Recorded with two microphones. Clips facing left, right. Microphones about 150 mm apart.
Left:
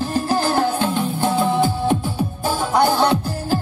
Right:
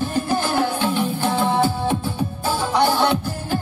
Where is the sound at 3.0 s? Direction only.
40° left (ahead or behind).